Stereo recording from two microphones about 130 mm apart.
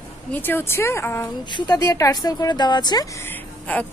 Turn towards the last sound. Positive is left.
turn(degrees=10)  # may be behind; listen again after turning